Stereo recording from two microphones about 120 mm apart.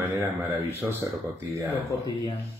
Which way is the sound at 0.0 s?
20° right (ahead or behind).